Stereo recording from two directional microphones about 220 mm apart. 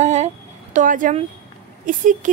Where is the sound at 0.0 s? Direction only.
30° right (ahead or behind).